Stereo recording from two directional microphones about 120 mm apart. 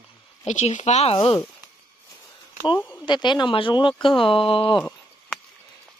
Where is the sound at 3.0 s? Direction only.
40° left (ahead or behind).